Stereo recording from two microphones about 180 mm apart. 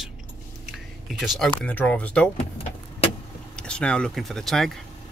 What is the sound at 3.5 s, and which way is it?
Speech, 5° left (ahead or behind).